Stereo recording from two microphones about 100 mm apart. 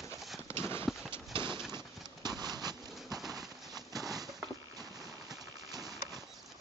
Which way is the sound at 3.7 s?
40° right (ahead or behind).